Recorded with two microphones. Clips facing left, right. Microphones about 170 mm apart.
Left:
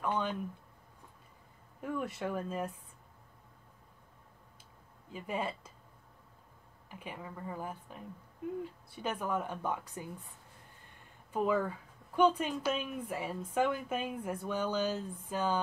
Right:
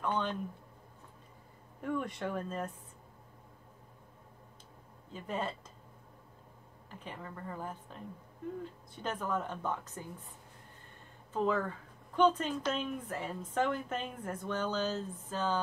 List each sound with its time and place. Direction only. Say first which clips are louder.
0.0 s speech: even; 10° left (ahead or behind)
1.8 s speech: right 1 dB; 5° left (ahead or behind)
5.1 s speech: left 1 dB; 10° left (ahead or behind)
6.9 s speech: left 1 dB; 10° left (ahead or behind)
11.3 s speech: left 1 dB; 10° left (ahead or behind)